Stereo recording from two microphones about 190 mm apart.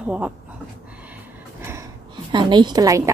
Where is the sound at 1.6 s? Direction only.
15° right (ahead or behind).